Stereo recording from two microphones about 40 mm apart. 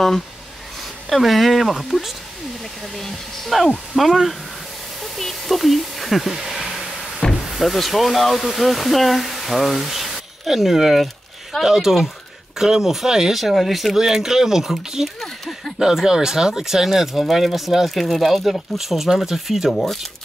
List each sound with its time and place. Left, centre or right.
1.1 s speech: centre
7.2 s a sound: centre
7.5 s speech: centre
15.1 s speech: centre
15.8 s speech: centre
19.8 s speech: centre